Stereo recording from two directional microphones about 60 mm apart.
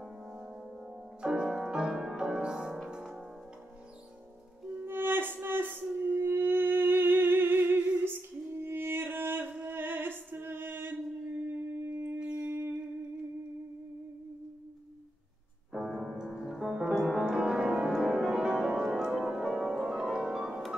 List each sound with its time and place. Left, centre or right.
0.0 s music: centre
4.6 s music: right
10.4 s a sound: right
11.9 s shofar: right
12.2 s wind instrument: centre
12.4 s music: right
15.7 s music: centre